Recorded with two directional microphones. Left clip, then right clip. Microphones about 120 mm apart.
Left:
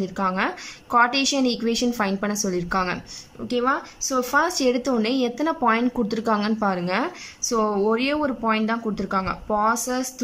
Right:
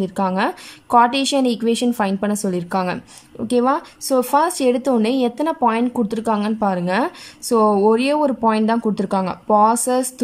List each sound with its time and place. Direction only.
0.0 s a woman's voice: 30° right (ahead or behind)
3.4 s speech: 40° right (ahead or behind)